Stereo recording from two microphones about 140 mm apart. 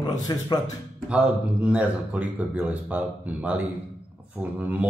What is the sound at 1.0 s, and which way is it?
Speech, 10° right (ahead or behind).